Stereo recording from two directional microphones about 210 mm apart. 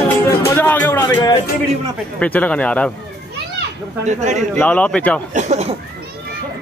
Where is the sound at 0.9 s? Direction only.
20° left (ahead or behind).